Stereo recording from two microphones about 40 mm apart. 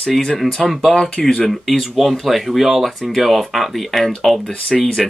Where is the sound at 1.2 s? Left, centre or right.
Left.